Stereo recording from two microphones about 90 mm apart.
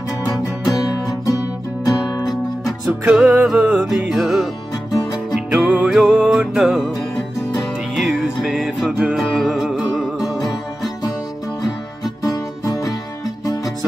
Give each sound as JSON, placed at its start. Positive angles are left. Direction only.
{"t": 0.3, "sound": "music", "side_deg": 45}
{"t": 2.2, "sound": "music", "side_deg": 0}
{"t": 3.2, "sound": "music", "side_deg": -10}
{"t": 7.9, "sound": "music", "side_deg": 0}
{"t": 11.6, "sound": "music", "side_deg": 45}